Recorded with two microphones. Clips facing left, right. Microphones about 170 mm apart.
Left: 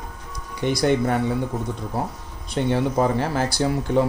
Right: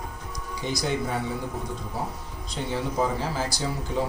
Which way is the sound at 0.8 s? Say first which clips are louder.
Left 9 dB; 60° left (ahead or behind).